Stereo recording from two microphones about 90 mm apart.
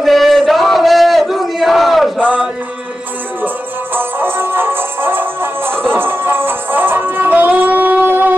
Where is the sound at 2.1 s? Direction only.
15° right (ahead or behind).